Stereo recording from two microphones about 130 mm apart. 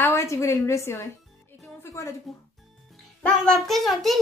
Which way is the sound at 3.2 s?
5° left (ahead or behind).